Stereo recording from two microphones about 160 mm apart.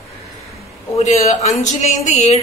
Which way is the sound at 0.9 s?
45° left (ahead or behind).